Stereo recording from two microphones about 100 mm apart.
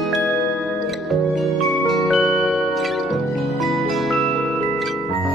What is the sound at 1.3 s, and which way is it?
Music, centre (ahead or behind).